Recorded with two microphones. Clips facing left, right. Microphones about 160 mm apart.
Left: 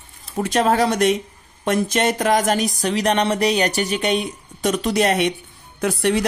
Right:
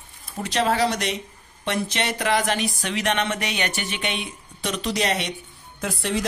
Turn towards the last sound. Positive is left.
turn(degrees=65)  # may be behind; listen again after turning